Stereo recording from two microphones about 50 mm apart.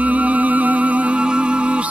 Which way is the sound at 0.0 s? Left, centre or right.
Right.